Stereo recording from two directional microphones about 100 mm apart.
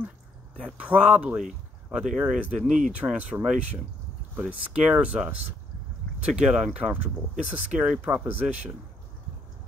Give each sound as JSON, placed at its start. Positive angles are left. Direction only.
{"t": 0.7, "sound": "speech", "side_deg": -15}